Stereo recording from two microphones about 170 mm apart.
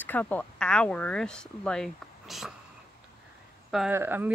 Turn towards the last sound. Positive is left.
turn(degrees=-15)  # may be behind; listen again after turning